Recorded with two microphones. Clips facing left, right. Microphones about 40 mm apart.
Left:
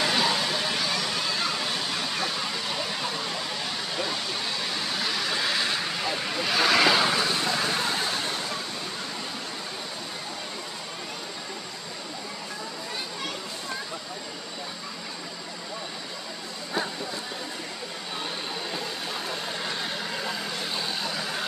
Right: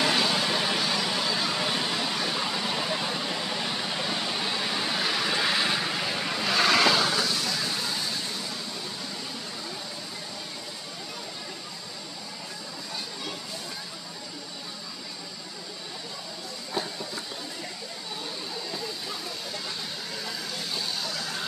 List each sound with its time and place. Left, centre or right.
0.0 s vehicle: centre
6.9 s vehicle: centre; by 8.5 s left
19.2 s vehicle: left